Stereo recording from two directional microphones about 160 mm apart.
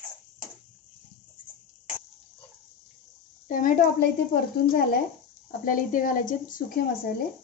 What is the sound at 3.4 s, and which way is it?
Speech, 55° left (ahead or behind).